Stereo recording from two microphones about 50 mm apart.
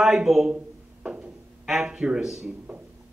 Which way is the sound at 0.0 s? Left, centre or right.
Centre.